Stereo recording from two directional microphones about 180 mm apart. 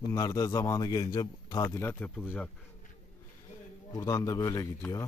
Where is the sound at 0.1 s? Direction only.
20° left (ahead or behind).